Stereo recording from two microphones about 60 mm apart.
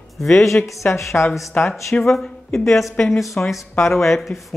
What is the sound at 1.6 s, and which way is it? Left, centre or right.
A woman's voice, centre.